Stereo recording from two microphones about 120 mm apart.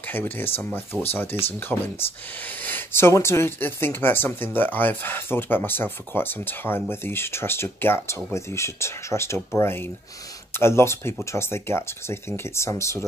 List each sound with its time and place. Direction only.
0.1 s speech: 15° left (ahead or behind)